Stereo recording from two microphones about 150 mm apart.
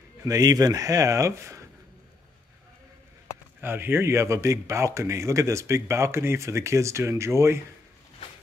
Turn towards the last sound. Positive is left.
turn(degrees=-20)  # may be behind; listen again after turning